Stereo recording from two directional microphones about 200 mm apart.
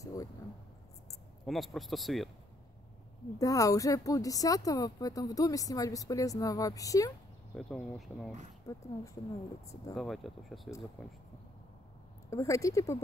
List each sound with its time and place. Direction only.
0.0 s a sound: 15° left (ahead or behind)
1.4 s speech: centre (ahead or behind)
3.3 s speech: 15° left (ahead or behind)
7.5 s speech: centre (ahead or behind)
8.7 s speech: 15° left (ahead or behind)
9.9 s speech: centre (ahead or behind)
12.3 s speech: 15° left (ahead or behind)